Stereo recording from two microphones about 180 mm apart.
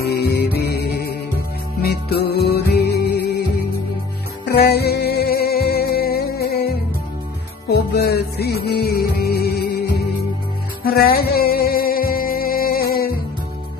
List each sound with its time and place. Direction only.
0.1 s music: 65° left (ahead or behind)
4.5 s music: 60° left (ahead or behind)
10.8 s music: 55° left (ahead or behind)